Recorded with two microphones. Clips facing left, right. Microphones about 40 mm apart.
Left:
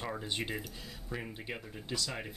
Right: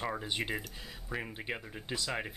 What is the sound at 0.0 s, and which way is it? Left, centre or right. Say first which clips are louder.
Speech: right 2 dB; centre.